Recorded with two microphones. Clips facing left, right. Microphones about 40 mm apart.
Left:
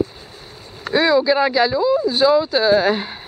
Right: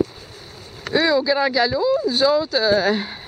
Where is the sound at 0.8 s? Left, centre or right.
Centre.